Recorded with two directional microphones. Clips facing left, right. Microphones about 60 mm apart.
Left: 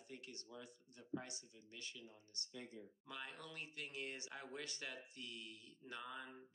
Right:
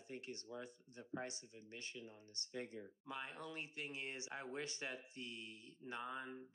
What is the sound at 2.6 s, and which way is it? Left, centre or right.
Speech, right.